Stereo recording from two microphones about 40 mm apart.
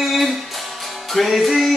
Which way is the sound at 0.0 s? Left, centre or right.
Centre.